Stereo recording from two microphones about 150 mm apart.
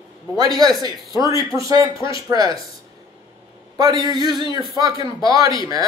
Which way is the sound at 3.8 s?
25° right (ahead or behind).